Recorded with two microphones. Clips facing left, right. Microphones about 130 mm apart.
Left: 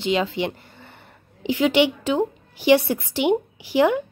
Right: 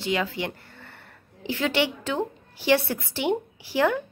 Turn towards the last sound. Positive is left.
turn(degrees=15)  # may be behind; listen again after turning